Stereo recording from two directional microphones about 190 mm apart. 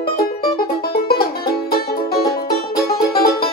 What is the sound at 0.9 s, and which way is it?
Music, 55° left (ahead or behind).